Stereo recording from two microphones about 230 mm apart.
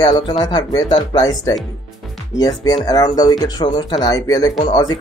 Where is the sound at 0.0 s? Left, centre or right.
Centre.